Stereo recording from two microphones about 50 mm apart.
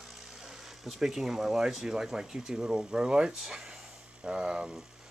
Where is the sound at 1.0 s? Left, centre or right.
Centre.